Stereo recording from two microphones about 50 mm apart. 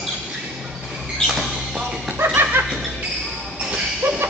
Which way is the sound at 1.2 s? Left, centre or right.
Centre.